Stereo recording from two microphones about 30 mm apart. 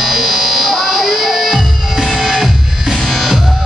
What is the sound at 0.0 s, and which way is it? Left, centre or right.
Music, centre.